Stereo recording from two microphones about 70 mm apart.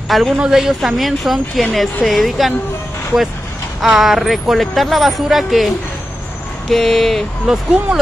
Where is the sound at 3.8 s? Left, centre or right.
Centre.